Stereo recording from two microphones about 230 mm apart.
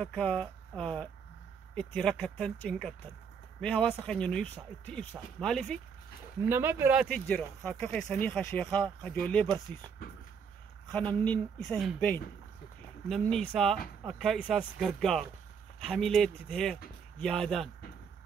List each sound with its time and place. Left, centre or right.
0.0 s speech: centre
6.5 s speech: centre
10.9 s speech: centre
13.1 s speech: centre